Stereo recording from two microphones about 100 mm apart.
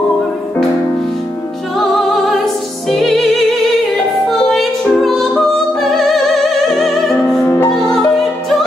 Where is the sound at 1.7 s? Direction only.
Centre (ahead or behind).